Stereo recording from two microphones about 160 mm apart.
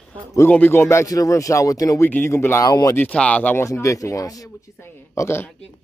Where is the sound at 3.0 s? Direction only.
10° left (ahead or behind).